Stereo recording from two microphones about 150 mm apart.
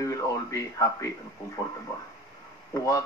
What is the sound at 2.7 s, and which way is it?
Speech, 25° left (ahead or behind).